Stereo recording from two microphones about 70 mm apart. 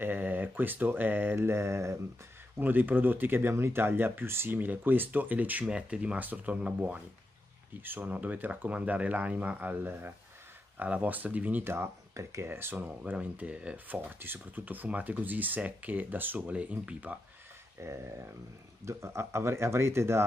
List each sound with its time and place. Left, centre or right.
0.0 s speech: right
2.6 s speech: right
11.7 s speech: right
12.4 s speech: right
17.7 s speech: right